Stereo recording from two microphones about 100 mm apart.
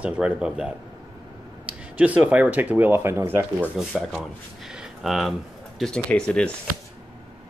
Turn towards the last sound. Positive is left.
turn(degrees=10)  # may be behind; listen again after turning